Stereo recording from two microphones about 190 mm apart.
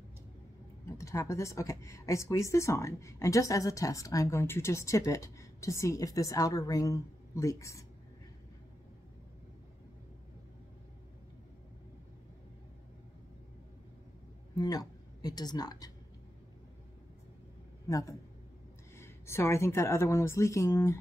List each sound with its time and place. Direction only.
0.8 s speech: 15° left (ahead or behind)
14.5 s speech: 20° left (ahead or behind)
17.8 s a man's voice: 15° left (ahead or behind)